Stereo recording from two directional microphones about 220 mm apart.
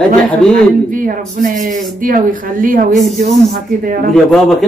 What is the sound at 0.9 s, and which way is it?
A woman's voice, 40° right (ahead or behind).